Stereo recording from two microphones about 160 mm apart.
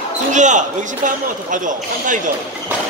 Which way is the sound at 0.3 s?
50° right (ahead or behind).